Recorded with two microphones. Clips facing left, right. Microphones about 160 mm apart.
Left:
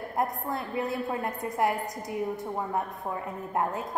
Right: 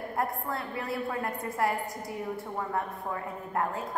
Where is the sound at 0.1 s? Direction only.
20° left (ahead or behind).